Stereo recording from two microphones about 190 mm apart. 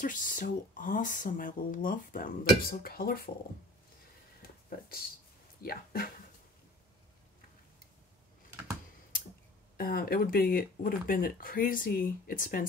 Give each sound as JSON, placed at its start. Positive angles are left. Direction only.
{"t": 0.0, "sound": "speech", "side_deg": 45}
{"t": 4.4, "sound": "a sound", "side_deg": 50}
{"t": 5.6, "sound": "speech", "side_deg": 50}
{"t": 9.8, "sound": "speech", "side_deg": 50}